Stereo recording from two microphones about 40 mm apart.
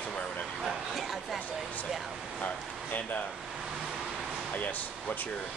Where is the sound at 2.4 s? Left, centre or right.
Left.